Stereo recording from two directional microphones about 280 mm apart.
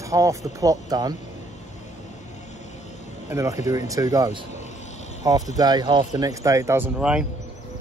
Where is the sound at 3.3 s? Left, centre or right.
Centre.